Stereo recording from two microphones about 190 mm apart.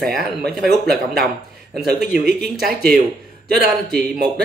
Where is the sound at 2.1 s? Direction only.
55° right (ahead or behind).